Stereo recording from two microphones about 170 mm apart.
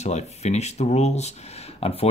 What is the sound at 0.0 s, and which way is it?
Speech, 40° left (ahead or behind).